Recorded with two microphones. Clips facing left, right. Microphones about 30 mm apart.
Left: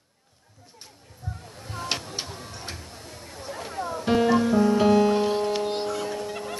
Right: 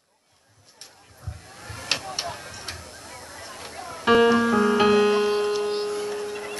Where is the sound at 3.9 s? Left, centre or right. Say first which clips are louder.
Right 4 dB; right.